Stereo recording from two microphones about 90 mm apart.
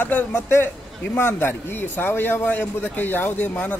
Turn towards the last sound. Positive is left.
turn(degrees=15)  # may be behind; listen again after turning